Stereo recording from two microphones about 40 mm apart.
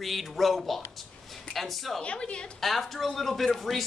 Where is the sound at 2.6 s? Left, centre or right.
Centre.